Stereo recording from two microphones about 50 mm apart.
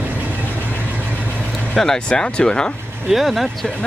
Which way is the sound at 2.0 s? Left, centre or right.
Centre.